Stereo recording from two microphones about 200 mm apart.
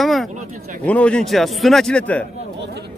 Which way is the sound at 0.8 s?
5° left (ahead or behind).